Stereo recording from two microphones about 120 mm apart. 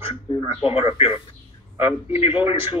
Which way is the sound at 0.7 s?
55° left (ahead or behind).